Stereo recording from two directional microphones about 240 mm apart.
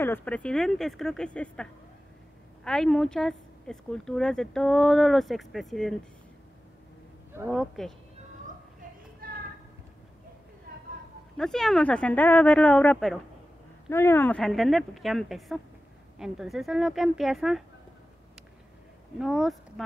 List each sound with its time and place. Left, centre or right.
0.0 s a woman's voice: centre
7.3 s a woman's voice: centre
9.2 s clip-clop: right
11.3 s a woman's voice: centre
19.1 s a woman's voice: centre